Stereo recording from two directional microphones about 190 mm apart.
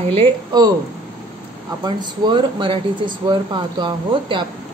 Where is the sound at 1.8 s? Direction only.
20° right (ahead or behind).